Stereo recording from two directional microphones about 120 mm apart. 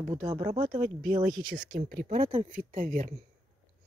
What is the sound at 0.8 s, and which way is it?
Speech, 90° right.